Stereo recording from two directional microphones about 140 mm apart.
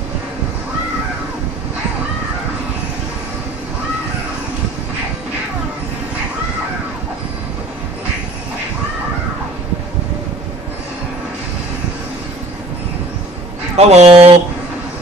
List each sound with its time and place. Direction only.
13.7 s speech: 50° right (ahead or behind)